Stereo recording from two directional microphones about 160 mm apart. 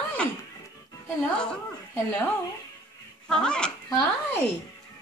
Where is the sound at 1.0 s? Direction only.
5° left (ahead or behind).